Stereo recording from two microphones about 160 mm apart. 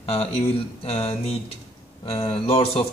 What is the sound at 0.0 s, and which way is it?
Speech, 40° left (ahead or behind).